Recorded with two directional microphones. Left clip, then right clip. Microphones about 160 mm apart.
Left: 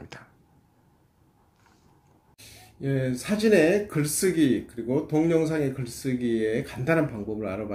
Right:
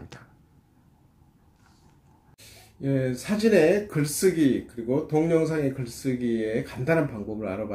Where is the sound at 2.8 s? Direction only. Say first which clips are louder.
Right 1 dB; 15° left (ahead or behind).